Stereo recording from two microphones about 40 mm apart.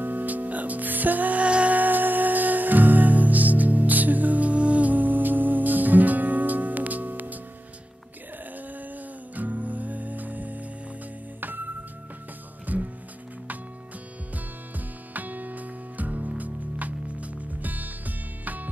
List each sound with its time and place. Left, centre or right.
0.0 s music: right
1.4 s music: right
1.8 s music: right
9.3 s music: right
12.7 s music: right
15.1 s music: right